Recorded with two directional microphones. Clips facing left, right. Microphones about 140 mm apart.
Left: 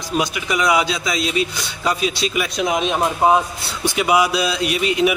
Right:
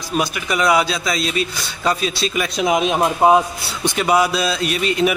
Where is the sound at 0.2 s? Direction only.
15° left (ahead or behind).